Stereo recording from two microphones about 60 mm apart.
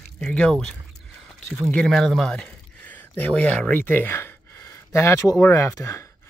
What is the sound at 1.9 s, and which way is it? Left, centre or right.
Speech, centre.